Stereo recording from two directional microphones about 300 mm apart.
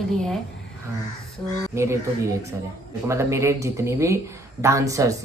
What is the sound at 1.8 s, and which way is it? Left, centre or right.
Speech, centre.